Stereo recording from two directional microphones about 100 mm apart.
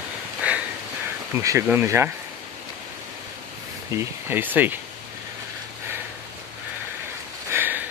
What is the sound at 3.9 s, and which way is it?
Speech, 30° right (ahead or behind).